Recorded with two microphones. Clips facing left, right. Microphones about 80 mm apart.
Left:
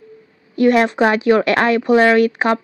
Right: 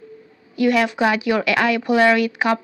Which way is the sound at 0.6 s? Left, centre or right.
Left.